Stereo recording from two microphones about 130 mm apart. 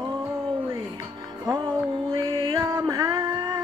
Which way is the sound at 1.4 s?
30° right (ahead or behind).